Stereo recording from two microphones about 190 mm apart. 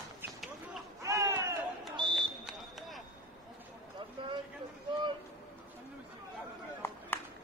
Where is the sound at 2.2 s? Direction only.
Centre (ahead or behind).